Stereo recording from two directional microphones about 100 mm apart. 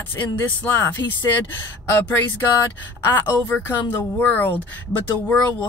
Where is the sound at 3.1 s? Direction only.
25° left (ahead or behind).